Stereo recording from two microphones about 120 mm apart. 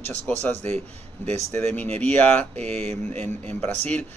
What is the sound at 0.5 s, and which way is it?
Speech, 65° right (ahead or behind).